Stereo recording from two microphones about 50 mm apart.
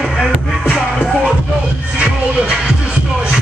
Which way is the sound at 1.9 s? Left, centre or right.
Centre.